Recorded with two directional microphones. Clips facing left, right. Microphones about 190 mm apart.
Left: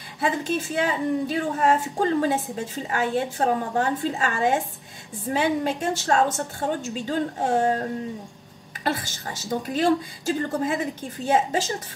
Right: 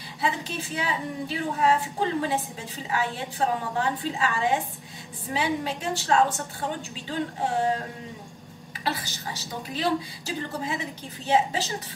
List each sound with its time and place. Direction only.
0.2 s a woman's voice: 45° left (ahead or behind)
8.8 s a woman's voice: 50° left (ahead or behind)